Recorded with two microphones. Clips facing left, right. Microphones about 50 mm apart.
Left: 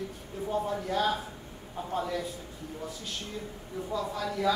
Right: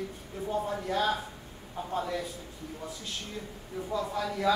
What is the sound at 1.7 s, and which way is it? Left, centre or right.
Speech, centre.